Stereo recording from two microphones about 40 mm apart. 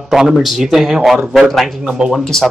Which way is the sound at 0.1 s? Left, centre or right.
Centre.